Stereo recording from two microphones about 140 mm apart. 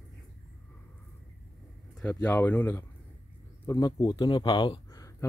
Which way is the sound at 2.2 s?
10° left (ahead or behind).